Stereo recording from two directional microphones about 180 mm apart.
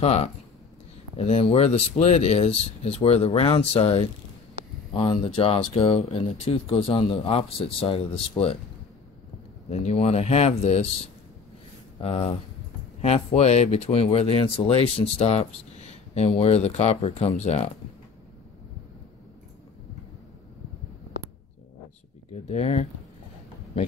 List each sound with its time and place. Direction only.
0.0 s speech: 35° left (ahead or behind)
9.7 s speech: 40° left (ahead or behind)
12.0 s speech: 35° left (ahead or behind)
22.3 s speech: 35° left (ahead or behind)